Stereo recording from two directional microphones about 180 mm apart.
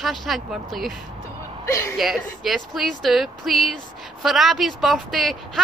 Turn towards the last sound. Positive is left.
turn(degrees=0)  # may be behind; listen again after turning